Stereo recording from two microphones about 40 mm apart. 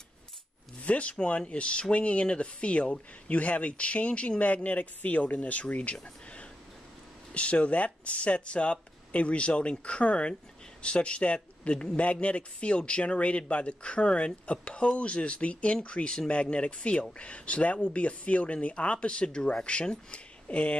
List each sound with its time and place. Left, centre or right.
0.8 s speech: left
7.3 s speech: left